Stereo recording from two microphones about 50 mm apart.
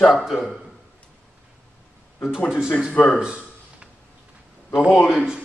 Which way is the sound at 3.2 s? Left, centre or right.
Centre.